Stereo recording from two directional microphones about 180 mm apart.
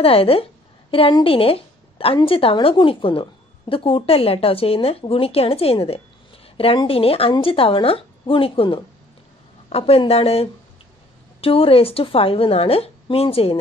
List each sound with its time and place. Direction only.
0.0 s a woman's voice: 30° left (ahead or behind)